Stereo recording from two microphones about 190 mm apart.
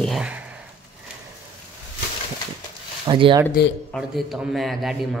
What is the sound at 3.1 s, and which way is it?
Speech, 25° right (ahead or behind).